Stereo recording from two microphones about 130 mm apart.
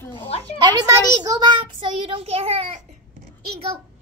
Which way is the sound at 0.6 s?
30° right (ahead or behind).